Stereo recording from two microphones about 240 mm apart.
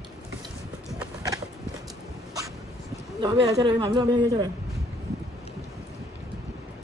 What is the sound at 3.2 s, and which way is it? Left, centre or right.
A man's voice, centre.